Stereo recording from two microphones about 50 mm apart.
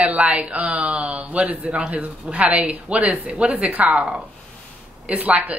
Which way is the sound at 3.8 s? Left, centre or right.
Centre.